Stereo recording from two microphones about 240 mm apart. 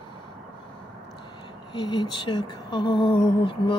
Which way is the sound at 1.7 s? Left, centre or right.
Centre.